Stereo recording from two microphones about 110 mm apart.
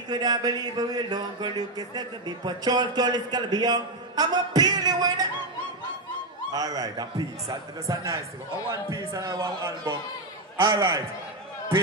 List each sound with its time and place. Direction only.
0.1 s speech: 35° right (ahead or behind)
6.5 s a man's voice: 35° right (ahead or behind)
10.6 s a man's voice: 45° right (ahead or behind)